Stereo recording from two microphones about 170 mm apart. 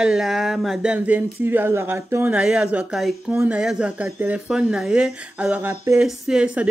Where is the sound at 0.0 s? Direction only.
5° right (ahead or behind).